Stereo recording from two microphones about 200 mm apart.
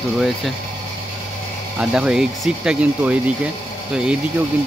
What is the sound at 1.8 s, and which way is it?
Speech, 5° right (ahead or behind).